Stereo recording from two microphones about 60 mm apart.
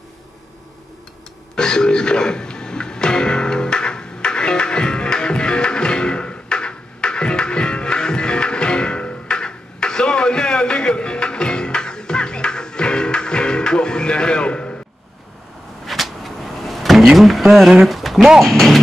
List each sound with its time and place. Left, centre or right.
1.5 s music: centre
15.8 s a sound: centre
17.6 s speech: centre